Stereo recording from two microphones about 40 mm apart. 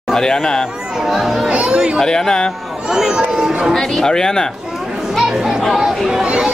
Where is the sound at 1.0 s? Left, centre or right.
Centre.